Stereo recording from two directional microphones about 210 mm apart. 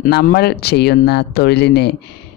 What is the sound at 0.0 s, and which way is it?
Speech, 45° left (ahead or behind).